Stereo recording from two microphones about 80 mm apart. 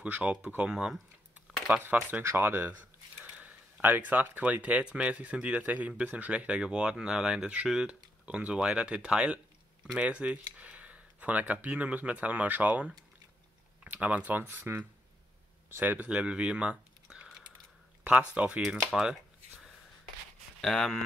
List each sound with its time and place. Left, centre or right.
0.0 s speech: centre
1.7 s speech: right
18.3 s speech: centre
20.6 s speech: centre